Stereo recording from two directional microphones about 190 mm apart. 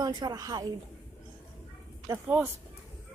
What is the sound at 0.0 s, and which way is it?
Speech, 20° right (ahead or behind).